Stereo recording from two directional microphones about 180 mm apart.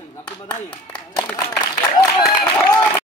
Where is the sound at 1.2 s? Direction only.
20° left (ahead or behind).